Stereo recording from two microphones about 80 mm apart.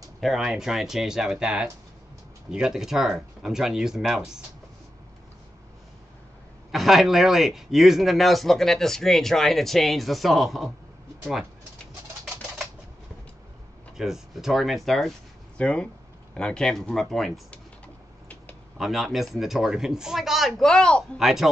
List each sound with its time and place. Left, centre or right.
0.2 s speech: centre
6.7 s speech: centre
13.9 s speech: centre
15.5 s speech: centre
17.5 s a sound: centre
18.8 s speech: centre
21.2 s speech: centre